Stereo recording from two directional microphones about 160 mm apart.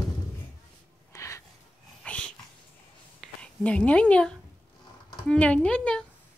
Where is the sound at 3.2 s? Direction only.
10° left (ahead or behind).